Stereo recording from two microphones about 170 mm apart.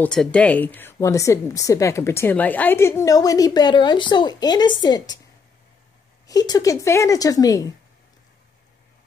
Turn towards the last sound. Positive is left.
turn(degrees=20)  # may be behind; listen again after turning